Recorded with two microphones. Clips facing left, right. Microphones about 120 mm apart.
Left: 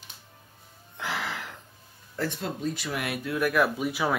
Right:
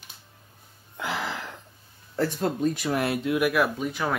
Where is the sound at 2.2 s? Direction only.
40° right (ahead or behind).